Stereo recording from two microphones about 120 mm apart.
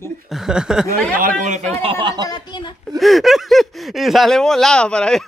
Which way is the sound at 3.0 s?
Centre (ahead or behind).